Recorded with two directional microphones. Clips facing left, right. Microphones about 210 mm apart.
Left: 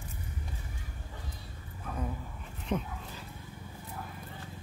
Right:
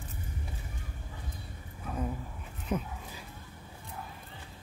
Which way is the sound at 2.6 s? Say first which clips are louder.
Even; 10° right (ahead or behind).